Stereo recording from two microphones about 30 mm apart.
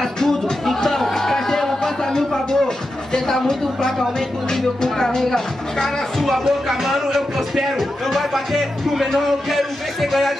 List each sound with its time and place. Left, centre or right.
0.2 s a sound: centre
3.1 s speech: centre
6.2 s speech: centre